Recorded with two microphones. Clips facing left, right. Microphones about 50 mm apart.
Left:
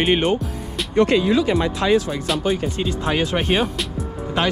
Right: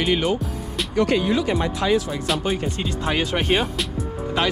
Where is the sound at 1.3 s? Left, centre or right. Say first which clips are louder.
Left 3 dB; left.